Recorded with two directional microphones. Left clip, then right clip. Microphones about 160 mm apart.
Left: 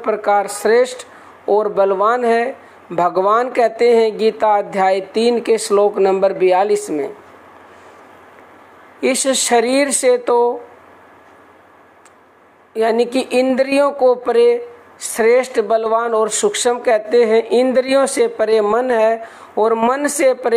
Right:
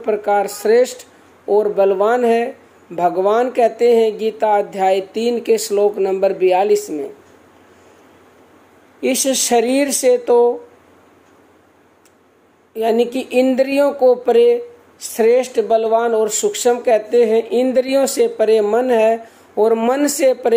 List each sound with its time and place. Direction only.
0.0 s speech: 15° right (ahead or behind)
9.0 s speech: 10° right (ahead or behind)
12.7 s speech: 10° right (ahead or behind)